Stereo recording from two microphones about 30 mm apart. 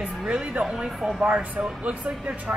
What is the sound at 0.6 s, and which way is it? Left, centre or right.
Speech, centre.